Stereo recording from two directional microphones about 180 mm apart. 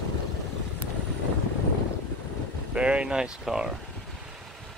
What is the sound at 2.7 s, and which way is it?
Speech, 5° right (ahead or behind).